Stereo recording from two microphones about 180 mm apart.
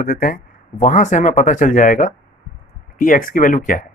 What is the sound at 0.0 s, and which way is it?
Speech, 50° left (ahead or behind).